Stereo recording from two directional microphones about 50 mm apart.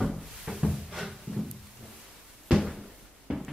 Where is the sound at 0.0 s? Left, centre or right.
Centre.